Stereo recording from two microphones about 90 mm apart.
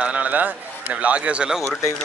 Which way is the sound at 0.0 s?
15° right (ahead or behind).